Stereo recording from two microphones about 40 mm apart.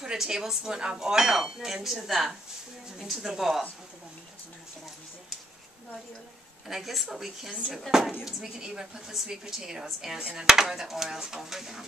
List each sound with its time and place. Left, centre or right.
0.0 s speech: centre
0.7 s speech: right
6.7 s speech: centre